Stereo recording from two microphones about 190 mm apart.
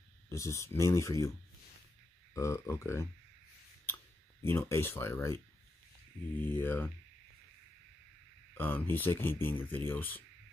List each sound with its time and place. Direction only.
0.3 s speech: 15° left (ahead or behind)
2.3 s speech: 15° left (ahead or behind)
3.8 s a sound: 10° left (ahead or behind)
6.6 s speech: 10° left (ahead or behind)
8.5 s speech: 10° left (ahead or behind)